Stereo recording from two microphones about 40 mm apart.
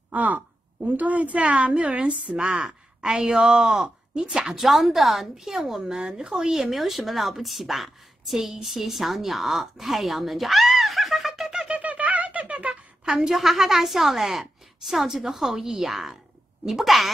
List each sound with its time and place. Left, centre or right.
0.1 s a woman's voice: right; by 4.6 s centre
4.6 s speech: centre
6.0 s a woman's voice: right
6.3 s speech: centre
11.6 s squeak: right
13.0 s a woman's voice: centre
13.3 s a woman's voice: centre